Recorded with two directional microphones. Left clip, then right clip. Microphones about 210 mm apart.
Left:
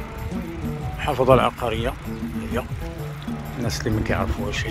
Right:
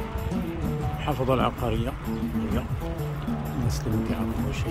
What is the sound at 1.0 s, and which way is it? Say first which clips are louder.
Speech: left 8 dB; 15° left (ahead or behind).